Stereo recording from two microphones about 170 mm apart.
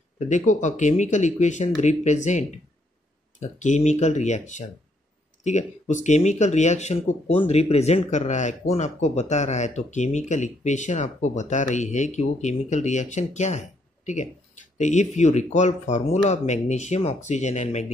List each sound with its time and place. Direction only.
0.3 s speech: 45° left (ahead or behind)